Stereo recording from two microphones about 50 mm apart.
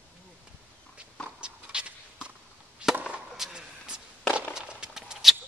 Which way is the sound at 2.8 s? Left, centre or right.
Centre.